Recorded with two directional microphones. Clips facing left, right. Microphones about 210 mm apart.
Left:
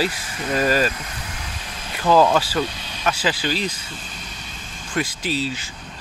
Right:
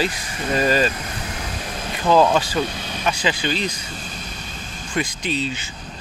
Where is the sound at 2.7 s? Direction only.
50° right (ahead or behind).